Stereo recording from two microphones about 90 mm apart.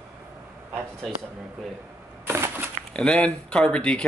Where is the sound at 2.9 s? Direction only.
10° left (ahead or behind).